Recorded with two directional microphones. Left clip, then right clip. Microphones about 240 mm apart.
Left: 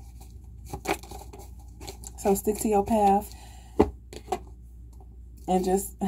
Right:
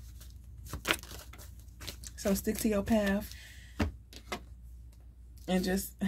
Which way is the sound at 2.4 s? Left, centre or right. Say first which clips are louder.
Left 8 dB; right.